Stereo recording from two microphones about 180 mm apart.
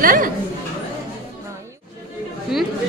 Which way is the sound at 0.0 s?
50° right (ahead or behind).